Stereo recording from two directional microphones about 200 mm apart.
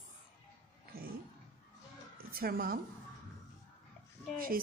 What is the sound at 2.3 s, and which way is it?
Speech, 50° right (ahead or behind).